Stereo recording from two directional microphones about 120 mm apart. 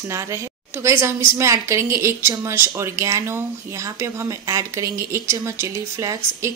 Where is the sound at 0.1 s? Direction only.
25° right (ahead or behind).